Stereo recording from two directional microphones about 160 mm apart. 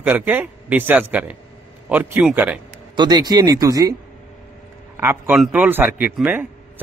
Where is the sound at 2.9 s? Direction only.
25° right (ahead or behind).